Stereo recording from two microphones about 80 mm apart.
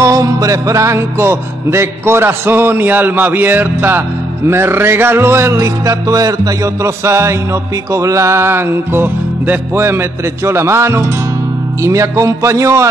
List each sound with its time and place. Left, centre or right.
0.0 s music: right